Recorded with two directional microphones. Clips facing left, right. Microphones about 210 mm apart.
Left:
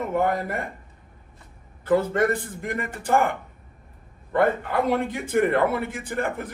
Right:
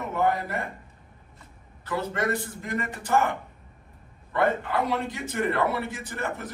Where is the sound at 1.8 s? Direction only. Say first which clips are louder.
Left 7 dB; 55° left (ahead or behind).